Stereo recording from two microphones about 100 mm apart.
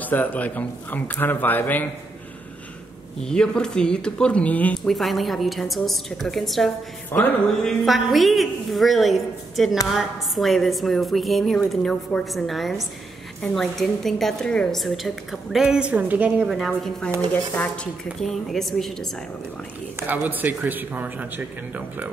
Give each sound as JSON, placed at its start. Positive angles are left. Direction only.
{"t": 0.0, "sound": "a man's voice", "side_deg": 15}
{"t": 3.3, "sound": "speech", "side_deg": 5}
{"t": 4.7, "sound": "a woman's voice", "side_deg": 5}
{"t": 7.1, "sound": "music", "side_deg": 20}
{"t": 7.6, "sound": "a woman's voice", "side_deg": 0}
{"t": 16.4, "sound": "a woman's voice", "side_deg": 0}
{"t": 18.2, "sound": "a woman's voice", "side_deg": 0}
{"t": 20.0, "sound": "speech", "side_deg": -20}